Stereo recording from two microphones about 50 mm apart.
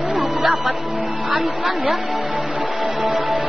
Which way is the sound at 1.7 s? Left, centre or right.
Centre.